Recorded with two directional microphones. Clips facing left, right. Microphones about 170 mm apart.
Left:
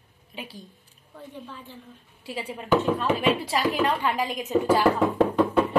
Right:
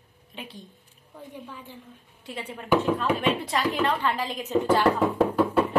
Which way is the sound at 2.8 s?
5° left (ahead or behind).